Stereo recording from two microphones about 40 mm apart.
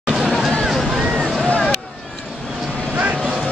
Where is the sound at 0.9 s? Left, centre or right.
Centre.